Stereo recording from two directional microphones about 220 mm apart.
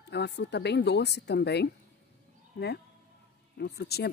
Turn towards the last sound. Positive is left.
turn(degrees=45)  # may be behind; listen again after turning